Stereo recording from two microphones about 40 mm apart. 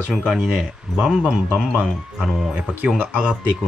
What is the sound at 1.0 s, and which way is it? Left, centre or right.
Speech, right.